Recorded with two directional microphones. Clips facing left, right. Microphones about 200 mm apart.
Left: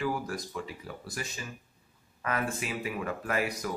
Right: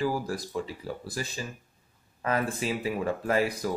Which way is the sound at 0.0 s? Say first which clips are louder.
Right 3 dB; 35° right (ahead or behind).